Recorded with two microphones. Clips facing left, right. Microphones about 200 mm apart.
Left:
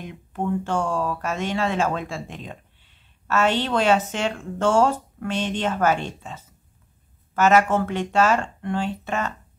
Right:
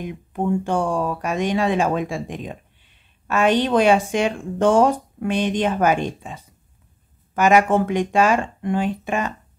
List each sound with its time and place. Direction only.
0.0 s speech: 15° right (ahead or behind)